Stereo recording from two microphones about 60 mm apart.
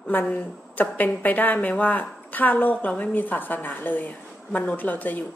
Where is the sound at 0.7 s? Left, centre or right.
Left.